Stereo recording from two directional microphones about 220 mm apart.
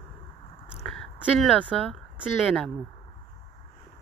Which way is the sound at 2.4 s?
Centre (ahead or behind).